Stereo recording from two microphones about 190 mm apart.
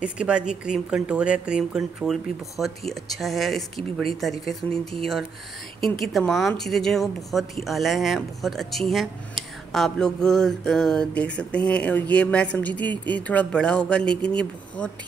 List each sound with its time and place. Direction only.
0.0 s a woman's voice: 5° right (ahead or behind)
5.8 s a woman's voice: centre (ahead or behind)